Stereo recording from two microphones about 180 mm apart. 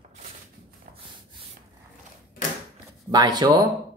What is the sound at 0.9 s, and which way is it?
Rub, 45° right (ahead or behind).